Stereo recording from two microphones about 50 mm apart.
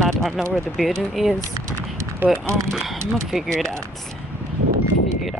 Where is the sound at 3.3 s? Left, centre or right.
Centre.